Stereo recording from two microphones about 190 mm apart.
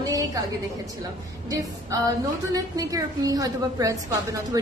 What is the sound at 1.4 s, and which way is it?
A woman's voice, 20° right (ahead or behind).